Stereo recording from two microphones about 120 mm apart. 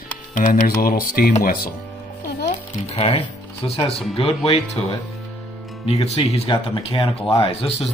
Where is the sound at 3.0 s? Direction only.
50° left (ahead or behind).